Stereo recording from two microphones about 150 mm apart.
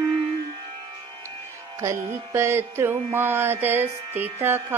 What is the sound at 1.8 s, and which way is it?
Music, 20° right (ahead or behind).